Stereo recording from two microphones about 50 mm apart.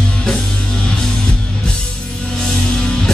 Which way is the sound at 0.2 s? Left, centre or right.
Centre.